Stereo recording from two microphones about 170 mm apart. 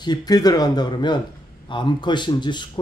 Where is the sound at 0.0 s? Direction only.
25° left (ahead or behind).